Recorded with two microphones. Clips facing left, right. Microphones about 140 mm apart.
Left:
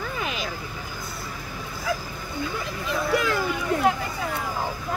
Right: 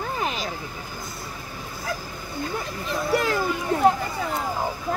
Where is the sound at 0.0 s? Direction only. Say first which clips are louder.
Right 2 dB; 35° right (ahead or behind).